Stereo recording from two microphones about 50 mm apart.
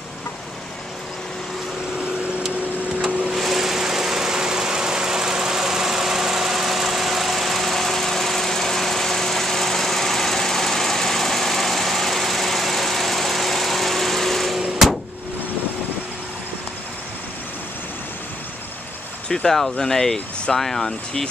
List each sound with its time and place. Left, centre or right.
3.3 s engine: centre
14.8 s vehicle: centre
19.2 s speech: centre